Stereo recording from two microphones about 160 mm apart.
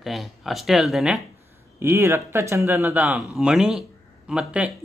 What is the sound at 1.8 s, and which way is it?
Speech, 15° right (ahead or behind).